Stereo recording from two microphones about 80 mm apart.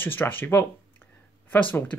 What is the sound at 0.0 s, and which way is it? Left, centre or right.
Speech, left.